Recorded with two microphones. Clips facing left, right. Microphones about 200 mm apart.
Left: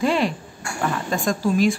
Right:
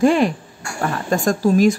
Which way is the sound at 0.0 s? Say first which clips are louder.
Right 6 dB; 50° right (ahead or behind).